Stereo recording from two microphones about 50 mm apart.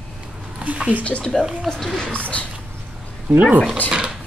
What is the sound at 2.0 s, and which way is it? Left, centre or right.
Speech, left.